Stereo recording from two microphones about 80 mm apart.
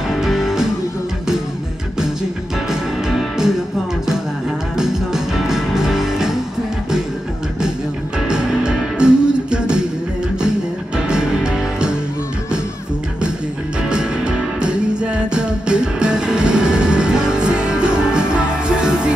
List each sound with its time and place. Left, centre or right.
0.1 s music: centre
2.7 s music: centre
4.7 s music: centre
8.3 s music: centre
11.1 s music: centre
13.8 s music: centre